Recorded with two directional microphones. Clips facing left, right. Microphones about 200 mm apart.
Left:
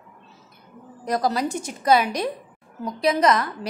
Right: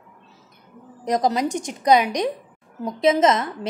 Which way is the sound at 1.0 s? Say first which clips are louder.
Right 2 dB; 20° right (ahead or behind).